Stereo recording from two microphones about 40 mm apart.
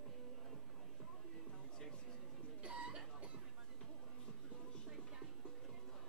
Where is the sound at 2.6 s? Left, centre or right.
Right.